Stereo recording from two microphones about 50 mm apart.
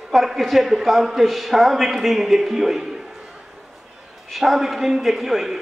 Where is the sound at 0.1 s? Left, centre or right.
Centre.